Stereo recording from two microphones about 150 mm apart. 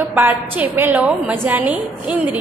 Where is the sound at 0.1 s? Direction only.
15° right (ahead or behind).